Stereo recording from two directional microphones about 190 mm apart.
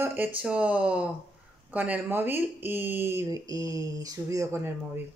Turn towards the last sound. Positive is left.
turn(degrees=-15)  # may be behind; listen again after turning